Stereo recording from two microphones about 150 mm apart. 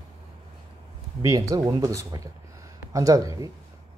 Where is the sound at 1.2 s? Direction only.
25° right (ahead or behind).